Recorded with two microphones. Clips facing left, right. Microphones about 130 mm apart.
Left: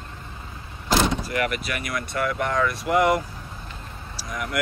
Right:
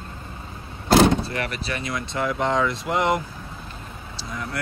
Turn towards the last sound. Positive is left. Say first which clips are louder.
# left 1 dB
turn(degrees=-25)  # may be behind; listen again after turning